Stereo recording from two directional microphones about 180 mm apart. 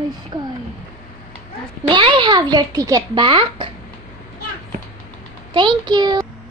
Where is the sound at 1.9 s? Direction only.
25° right (ahead or behind).